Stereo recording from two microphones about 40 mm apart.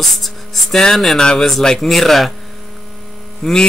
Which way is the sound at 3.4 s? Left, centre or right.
Centre.